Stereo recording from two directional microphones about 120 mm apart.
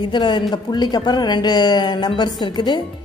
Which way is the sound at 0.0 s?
40° left (ahead or behind).